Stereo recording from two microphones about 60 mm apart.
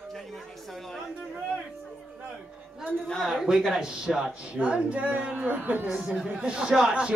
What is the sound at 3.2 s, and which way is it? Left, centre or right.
A woman's voice, centre.